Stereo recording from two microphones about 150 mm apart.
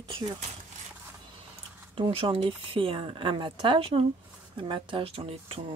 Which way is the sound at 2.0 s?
35° right (ahead or behind).